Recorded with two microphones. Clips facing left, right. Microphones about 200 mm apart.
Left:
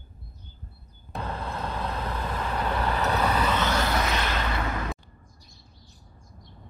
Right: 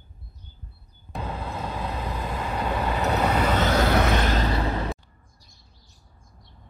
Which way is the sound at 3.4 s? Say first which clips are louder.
Right 4 dB; 45° right (ahead or behind).